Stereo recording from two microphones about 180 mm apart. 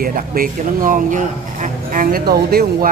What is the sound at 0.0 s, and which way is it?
Speech, 55° right (ahead or behind).